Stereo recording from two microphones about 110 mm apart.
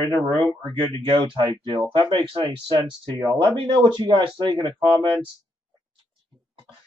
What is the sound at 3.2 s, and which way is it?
Speech, 40° right (ahead or behind).